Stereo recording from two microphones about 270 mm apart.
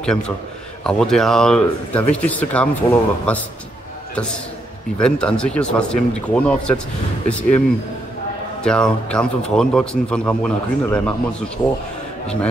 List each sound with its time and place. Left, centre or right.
0.8 s speech: centre
4.9 s speech: centre
8.6 s speech: centre